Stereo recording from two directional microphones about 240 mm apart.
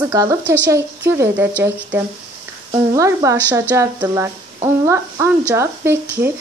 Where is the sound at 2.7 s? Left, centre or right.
Centre.